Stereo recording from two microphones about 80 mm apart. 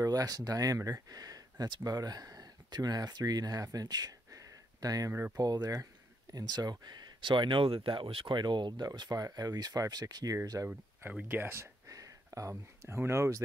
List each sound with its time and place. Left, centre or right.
0.0 s speech: right
1.1 s a sound: right
1.9 s speech: right
11.2 s speech: right
11.9 s speech: right